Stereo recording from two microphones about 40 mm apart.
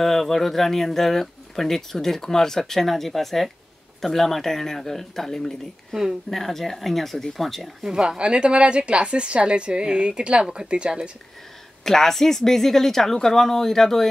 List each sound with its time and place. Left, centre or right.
0.0 s speech: centre
7.9 s a woman's voice: centre
8.2 s a woman's voice: right
11.8 s speech: centre